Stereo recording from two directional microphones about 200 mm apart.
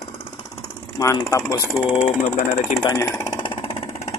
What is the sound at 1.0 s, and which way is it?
Speech, 15° left (ahead or behind).